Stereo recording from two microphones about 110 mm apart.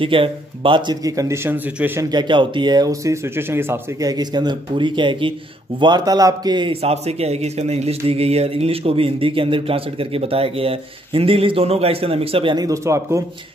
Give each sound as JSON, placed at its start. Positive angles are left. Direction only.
{"t": 0.0, "sound": "speech", "side_deg": -55}
{"t": 1.0, "sound": "speech", "side_deg": -30}
{"t": 2.0, "sound": "speech", "side_deg": -45}
{"t": 4.0, "sound": "speech", "side_deg": -35}
{"t": 6.7, "sound": "speech", "side_deg": -70}
{"t": 12.5, "sound": "speech", "side_deg": -30}